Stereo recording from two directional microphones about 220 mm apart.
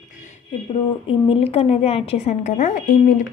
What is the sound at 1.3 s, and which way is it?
A woman's voice, 25° left (ahead or behind).